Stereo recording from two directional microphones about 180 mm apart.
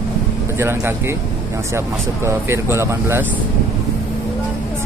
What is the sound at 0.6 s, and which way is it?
Speech, 15° right (ahead or behind).